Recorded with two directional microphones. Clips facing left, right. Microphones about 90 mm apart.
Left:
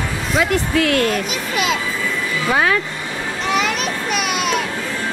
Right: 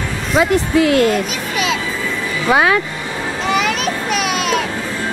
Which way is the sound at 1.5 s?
Centre (ahead or behind).